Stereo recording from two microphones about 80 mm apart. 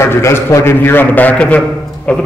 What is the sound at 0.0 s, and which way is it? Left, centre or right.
Speech, left.